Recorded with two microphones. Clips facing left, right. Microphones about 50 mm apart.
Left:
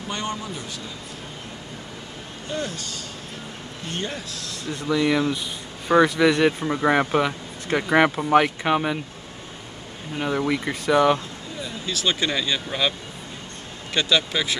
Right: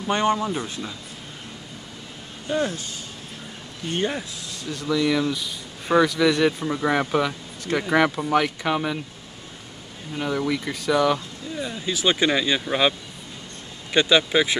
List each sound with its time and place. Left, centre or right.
0.1 s speech: right
2.5 s speech: centre
4.8 s speech: centre
10.1 s speech: centre
11.6 s speech: centre
13.9 s speech: centre